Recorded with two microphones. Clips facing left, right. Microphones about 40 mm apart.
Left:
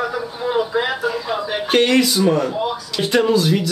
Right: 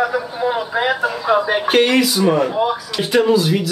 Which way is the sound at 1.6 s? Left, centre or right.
Centre.